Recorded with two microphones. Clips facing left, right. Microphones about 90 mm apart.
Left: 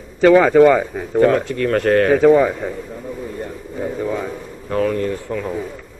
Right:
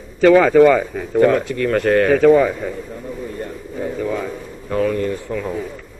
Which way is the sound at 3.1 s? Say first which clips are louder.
Even; 10° left (ahead or behind).